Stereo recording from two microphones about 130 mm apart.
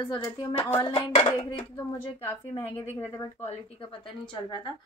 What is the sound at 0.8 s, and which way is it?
Speech, 45° left (ahead or behind).